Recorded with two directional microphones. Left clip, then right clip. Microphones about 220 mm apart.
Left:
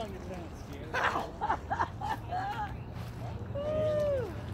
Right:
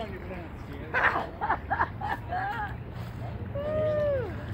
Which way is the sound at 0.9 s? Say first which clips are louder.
Right 5 dB; 10° left (ahead or behind).